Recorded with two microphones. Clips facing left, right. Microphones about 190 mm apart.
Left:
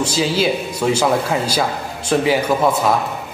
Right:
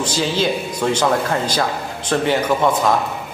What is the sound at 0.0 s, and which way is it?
A man's voice, 10° left (ahead or behind).